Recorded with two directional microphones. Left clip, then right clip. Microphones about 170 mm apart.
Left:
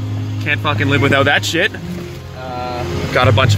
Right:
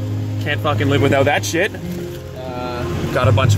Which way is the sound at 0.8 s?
25° left (ahead or behind).